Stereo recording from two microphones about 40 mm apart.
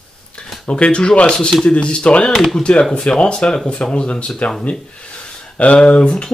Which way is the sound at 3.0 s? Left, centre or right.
Centre.